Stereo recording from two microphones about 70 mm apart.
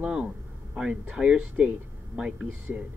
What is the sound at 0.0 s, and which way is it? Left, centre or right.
Speech, centre.